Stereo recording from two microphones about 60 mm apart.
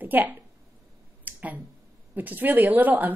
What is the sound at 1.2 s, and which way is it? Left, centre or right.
Finger snapping, right.